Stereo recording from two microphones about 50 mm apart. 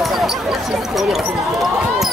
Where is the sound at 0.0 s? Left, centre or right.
Centre.